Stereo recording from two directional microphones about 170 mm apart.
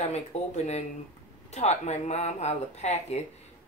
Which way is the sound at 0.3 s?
40° left (ahead or behind).